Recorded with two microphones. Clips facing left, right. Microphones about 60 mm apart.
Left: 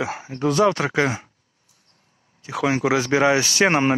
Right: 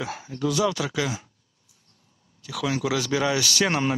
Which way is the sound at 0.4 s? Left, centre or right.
Left.